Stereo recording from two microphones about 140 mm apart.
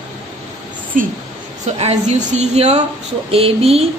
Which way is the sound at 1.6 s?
50° right (ahead or behind).